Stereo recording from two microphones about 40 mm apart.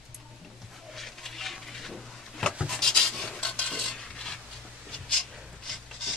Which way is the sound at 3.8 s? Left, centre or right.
Centre.